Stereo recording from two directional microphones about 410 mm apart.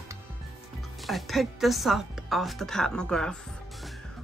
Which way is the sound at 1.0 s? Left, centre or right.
Centre.